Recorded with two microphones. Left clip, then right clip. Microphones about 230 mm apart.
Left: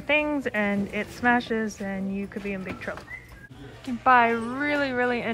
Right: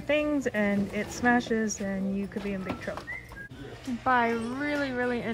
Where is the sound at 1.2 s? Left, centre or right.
Centre.